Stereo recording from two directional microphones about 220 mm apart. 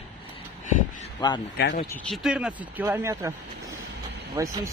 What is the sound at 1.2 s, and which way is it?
Speech, 20° left (ahead or behind).